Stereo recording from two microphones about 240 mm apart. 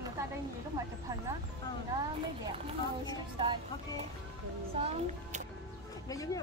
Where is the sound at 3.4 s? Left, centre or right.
Right.